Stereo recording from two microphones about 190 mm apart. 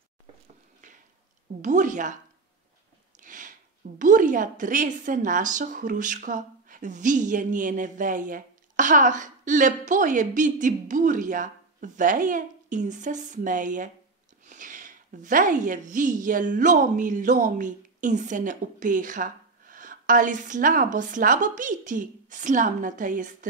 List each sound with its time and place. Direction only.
1.6 s speech: 40° right (ahead or behind)
3.2 s sniff: 45° right (ahead or behind)
4.0 s a woman's voice: 45° right (ahead or behind)